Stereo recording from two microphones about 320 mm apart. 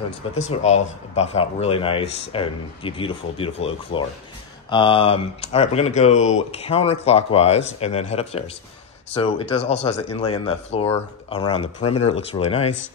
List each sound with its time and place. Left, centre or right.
0.4 s speech: left